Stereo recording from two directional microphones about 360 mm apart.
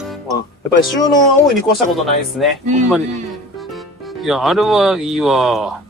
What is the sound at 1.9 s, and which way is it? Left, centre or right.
Speech, centre.